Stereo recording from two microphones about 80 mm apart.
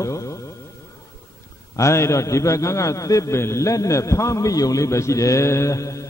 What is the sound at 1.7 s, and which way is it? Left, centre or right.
A man's voice, left.